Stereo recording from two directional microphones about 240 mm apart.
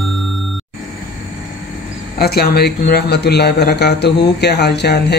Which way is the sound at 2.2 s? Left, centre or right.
Left.